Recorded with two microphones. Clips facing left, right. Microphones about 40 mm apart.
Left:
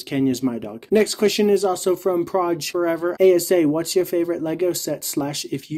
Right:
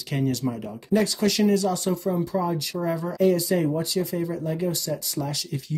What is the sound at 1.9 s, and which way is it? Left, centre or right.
Speech, left.